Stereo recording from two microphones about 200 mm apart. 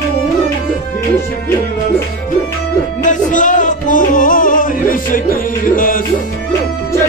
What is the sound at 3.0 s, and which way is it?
Music, 40° left (ahead or behind).